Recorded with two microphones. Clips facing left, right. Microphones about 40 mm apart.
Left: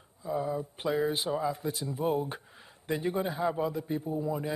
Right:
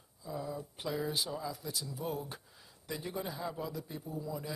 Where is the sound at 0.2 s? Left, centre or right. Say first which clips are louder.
Left 8 dB; left.